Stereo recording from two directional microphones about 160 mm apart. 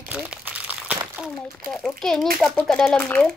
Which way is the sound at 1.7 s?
5° left (ahead or behind).